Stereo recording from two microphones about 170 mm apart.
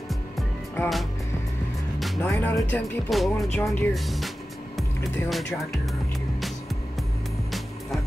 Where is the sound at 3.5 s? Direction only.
10° left (ahead or behind).